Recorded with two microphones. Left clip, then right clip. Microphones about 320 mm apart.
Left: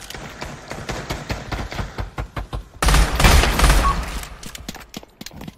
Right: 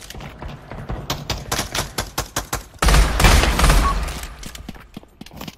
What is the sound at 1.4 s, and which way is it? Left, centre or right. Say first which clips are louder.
Fusillade: right 5 dB; right.